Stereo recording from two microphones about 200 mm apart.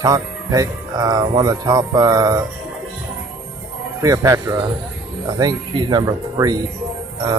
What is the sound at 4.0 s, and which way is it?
Speech, 15° right (ahead or behind).